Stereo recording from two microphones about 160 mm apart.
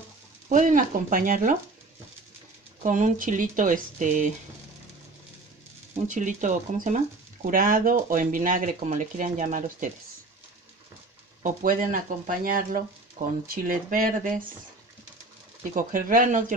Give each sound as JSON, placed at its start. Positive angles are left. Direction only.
{"t": 0.5, "sound": "speech", "side_deg": -50}
{"t": 2.8, "sound": "speech", "side_deg": -55}
{"t": 6.0, "sound": "speech", "side_deg": -50}
{"t": 11.4, "sound": "speech", "side_deg": -60}
{"t": 15.7, "sound": "speech", "side_deg": -60}